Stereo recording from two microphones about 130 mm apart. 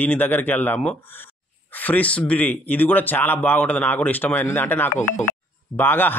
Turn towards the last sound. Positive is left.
turn(degrees=15)  # may be behind; listen again after turning